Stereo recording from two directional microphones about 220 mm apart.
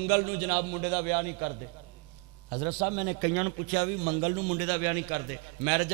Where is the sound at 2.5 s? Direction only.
25° right (ahead or behind).